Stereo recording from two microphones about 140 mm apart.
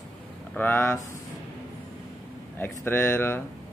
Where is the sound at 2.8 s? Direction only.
15° left (ahead or behind).